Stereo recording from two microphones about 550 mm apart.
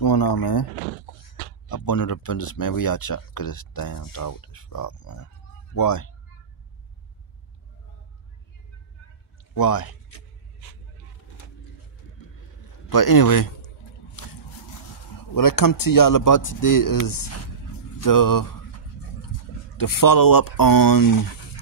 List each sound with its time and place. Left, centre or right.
0.0 s speech: left
1.7 s speech: left
9.5 s speech: left
12.9 s speech: left
15.3 s speech: left
19.8 s speech: left